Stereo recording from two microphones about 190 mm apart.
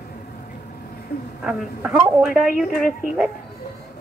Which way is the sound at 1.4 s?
5° right (ahead or behind).